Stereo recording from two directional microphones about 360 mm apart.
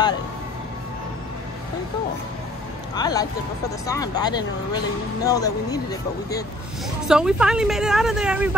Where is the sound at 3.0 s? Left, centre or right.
Centre.